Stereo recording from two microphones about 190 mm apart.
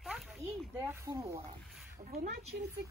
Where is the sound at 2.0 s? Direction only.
45° right (ahead or behind).